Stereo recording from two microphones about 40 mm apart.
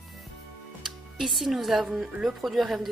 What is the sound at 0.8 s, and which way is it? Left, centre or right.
Speech, centre.